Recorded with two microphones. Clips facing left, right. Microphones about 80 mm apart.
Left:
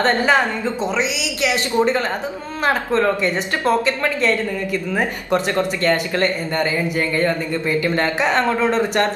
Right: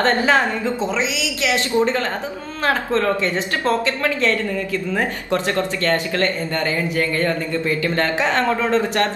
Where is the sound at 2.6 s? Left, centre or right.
Centre.